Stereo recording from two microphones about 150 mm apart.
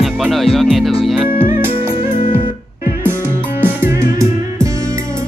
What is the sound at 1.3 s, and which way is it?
Music, 15° right (ahead or behind).